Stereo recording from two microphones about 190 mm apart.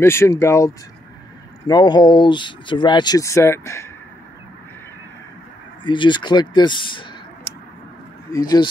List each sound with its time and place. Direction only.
0.0 s speech: 15° left (ahead or behind)
5.9 s speech: 25° left (ahead or behind)
8.3 s speech: 20° left (ahead or behind)